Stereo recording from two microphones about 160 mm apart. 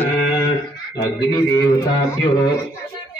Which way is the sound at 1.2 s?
25° left (ahead or behind).